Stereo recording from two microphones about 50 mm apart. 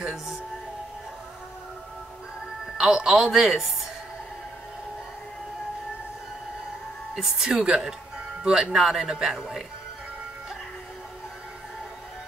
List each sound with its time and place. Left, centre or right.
0.0 s music: centre
2.8 s speech: centre
7.2 s speech: centre
8.7 s speech: centre